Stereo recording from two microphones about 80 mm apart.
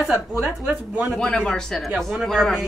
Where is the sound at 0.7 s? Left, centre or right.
Centre.